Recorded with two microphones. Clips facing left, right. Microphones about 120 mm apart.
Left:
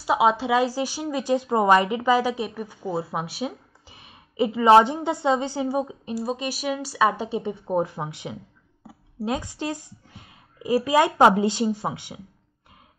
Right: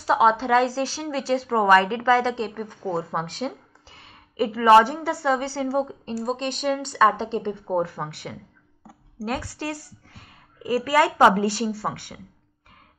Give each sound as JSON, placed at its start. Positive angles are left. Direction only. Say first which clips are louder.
{"t": 0.0, "sound": "a woman's voice", "louder": "right 1 dB", "side_deg": 10}